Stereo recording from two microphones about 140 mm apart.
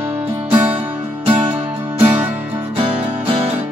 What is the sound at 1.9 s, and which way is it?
Music, 15° right (ahead or behind).